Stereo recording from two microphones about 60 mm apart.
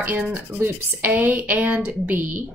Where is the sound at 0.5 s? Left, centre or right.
Right.